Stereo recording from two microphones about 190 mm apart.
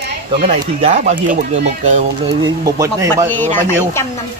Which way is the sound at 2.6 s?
15° right (ahead or behind).